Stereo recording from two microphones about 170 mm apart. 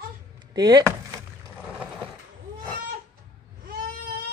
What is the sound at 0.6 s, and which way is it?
Speech, 25° right (ahead or behind).